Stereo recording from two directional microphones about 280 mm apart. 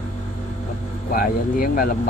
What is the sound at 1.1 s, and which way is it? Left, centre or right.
Speech, left.